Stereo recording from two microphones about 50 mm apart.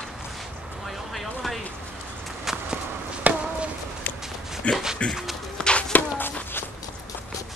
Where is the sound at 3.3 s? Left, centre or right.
Right.